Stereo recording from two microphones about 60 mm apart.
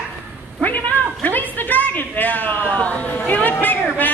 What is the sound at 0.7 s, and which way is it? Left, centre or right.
Cat, left.